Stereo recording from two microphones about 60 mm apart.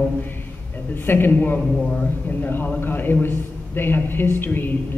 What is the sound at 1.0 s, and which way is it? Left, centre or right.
A man's voice, left.